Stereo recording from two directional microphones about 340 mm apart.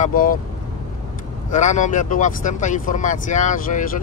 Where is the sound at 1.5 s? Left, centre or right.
Left.